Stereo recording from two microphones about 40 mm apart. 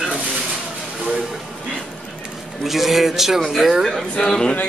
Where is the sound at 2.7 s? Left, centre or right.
Centre.